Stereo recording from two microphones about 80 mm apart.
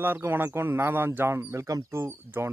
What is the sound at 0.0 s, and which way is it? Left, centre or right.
Speech, right.